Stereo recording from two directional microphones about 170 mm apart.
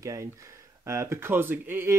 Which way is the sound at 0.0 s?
20° right (ahead or behind).